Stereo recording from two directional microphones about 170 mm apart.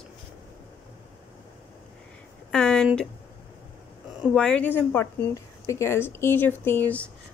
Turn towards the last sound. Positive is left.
turn(degrees=10)  # may be behind; listen again after turning